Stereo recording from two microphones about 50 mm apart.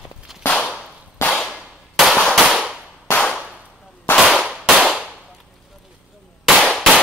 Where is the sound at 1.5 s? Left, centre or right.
Centre.